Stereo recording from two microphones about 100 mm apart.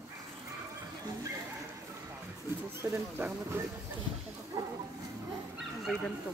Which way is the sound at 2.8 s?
30° right (ahead or behind).